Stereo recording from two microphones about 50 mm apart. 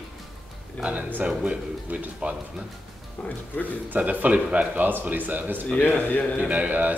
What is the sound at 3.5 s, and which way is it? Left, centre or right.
Speech, left.